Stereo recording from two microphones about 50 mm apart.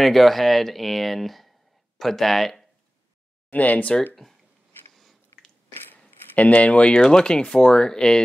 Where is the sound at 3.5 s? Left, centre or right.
Left.